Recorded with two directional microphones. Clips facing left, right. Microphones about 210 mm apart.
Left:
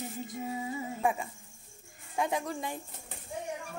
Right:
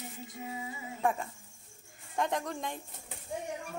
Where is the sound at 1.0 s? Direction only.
10° left (ahead or behind).